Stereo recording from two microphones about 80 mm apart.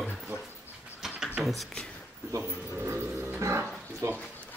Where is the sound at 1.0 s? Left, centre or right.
Centre.